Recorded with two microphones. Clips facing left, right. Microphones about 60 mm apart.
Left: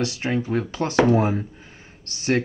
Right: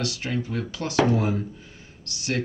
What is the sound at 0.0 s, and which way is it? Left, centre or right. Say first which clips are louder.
Speech: left 4 dB; left.